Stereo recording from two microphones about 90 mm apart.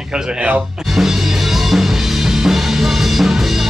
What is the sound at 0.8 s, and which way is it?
Music, centre (ahead or behind).